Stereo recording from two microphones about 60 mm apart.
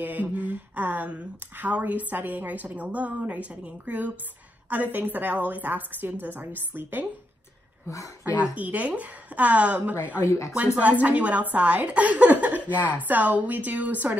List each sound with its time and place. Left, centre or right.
0.0 s a woman's voice: right
8.3 s a woman's voice: right